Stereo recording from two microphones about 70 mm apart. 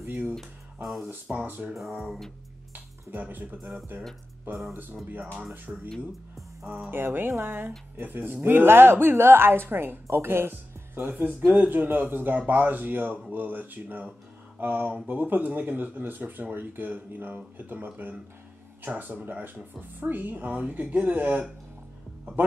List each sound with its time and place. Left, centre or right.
0.0 s music: right
0.8 s speech: centre
1.2 s speech: right
1.7 s speech: centre
2.7 s speech: right
5.2 s speech: centre
5.9 s speech: centre
6.9 s a woman's voice: right